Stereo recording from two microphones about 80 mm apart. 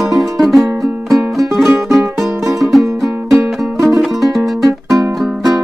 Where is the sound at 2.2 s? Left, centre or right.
Right.